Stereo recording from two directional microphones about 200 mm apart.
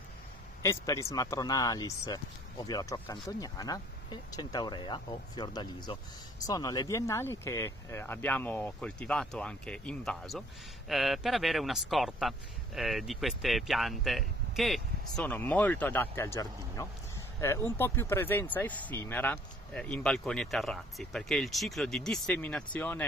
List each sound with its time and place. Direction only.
0.6 s a man's voice: 15° left (ahead or behind)